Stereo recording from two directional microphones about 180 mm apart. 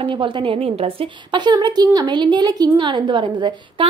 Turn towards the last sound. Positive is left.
turn(degrees=-25)  # may be behind; listen again after turning